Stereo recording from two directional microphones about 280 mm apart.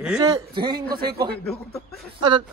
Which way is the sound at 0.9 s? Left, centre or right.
Right.